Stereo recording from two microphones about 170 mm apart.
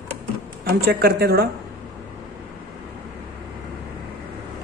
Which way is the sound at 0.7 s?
70° right (ahead or behind).